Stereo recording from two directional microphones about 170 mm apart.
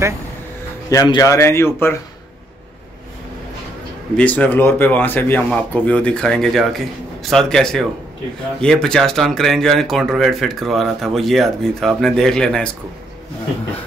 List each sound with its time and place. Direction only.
0.8 s speech: 20° left (ahead or behind)
4.2 s speech: 10° left (ahead or behind)